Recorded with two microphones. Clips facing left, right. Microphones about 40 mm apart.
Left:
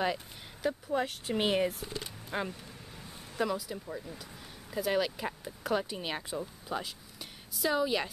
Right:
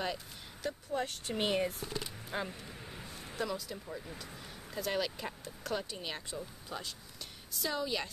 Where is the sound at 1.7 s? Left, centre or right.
Centre.